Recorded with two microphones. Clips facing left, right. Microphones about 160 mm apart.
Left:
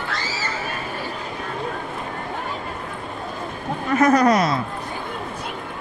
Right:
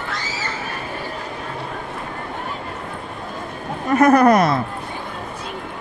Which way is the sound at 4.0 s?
55° right (ahead or behind).